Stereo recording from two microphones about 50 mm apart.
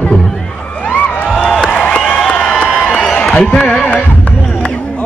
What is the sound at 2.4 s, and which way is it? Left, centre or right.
Crowd, left.